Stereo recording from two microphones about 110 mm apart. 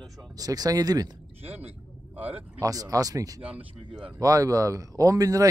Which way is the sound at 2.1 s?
15° right (ahead or behind).